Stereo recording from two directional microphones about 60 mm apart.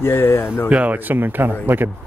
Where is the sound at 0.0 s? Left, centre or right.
Left.